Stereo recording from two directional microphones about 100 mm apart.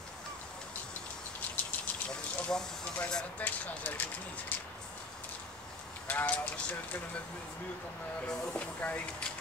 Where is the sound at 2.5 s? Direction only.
5° left (ahead or behind).